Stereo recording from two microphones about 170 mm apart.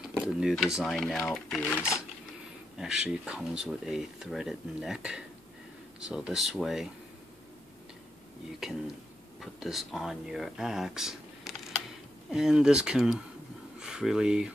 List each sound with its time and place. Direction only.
0.1 s speech: 5° right (ahead or behind)
2.8 s speech: 5° right (ahead or behind)
8.6 s speech: centre (ahead or behind)